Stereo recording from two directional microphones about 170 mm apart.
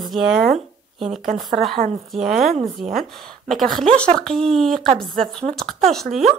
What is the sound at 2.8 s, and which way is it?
Speech, 45° right (ahead or behind).